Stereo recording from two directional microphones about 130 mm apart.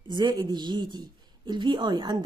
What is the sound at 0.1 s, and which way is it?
A woman's voice, 30° right (ahead or behind).